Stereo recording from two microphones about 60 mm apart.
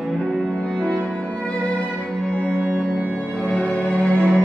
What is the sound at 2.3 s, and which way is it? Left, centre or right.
Music, centre.